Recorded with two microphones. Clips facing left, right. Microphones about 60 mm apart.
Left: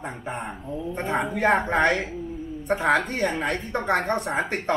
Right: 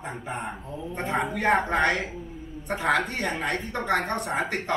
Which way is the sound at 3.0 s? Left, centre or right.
Centre.